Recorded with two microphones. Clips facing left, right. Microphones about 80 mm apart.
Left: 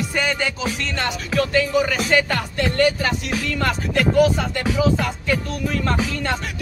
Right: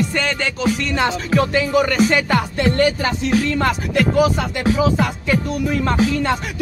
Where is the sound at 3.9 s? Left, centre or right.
Centre.